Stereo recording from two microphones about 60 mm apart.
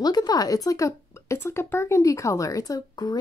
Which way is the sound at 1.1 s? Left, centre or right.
Left.